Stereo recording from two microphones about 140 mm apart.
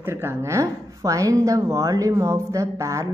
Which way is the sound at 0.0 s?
15° right (ahead or behind).